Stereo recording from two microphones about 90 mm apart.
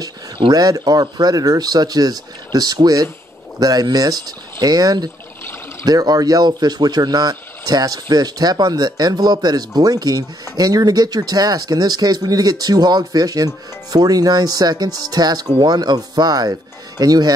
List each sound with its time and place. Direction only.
0.5 s speech: 45° right (ahead or behind)